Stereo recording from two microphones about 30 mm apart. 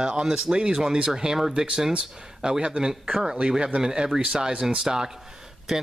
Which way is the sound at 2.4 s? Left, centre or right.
Right.